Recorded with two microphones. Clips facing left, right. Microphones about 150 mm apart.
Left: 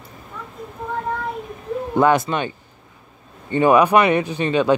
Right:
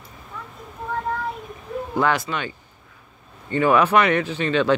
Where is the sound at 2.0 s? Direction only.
20° left (ahead or behind).